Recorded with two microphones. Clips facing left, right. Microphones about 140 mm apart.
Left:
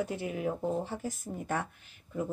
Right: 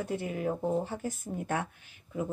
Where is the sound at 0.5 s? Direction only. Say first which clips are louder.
Right 2 dB; 10° right (ahead or behind).